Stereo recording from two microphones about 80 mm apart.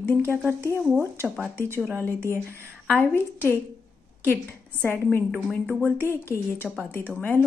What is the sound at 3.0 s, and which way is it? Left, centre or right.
Speech, left.